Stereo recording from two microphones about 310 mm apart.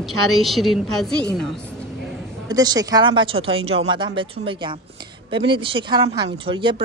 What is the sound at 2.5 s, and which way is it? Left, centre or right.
Speech, centre.